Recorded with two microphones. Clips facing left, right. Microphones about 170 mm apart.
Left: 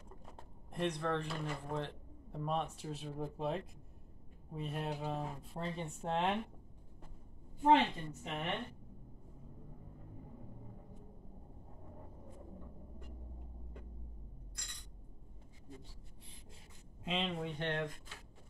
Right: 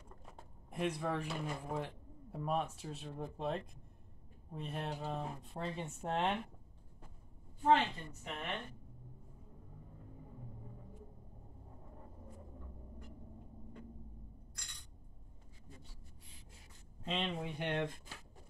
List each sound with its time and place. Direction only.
0.2 s a sound: 5° right (ahead or behind)
1.2 s speech: 5° right (ahead or behind)
7.6 s a woman's voice: 20° left (ahead or behind)
17.0 s speech: 5° left (ahead or behind)